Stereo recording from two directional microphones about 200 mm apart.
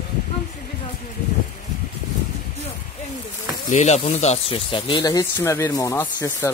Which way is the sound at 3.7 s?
35° left (ahead or behind).